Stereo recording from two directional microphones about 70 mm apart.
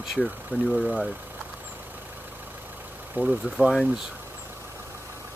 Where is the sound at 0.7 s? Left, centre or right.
Centre.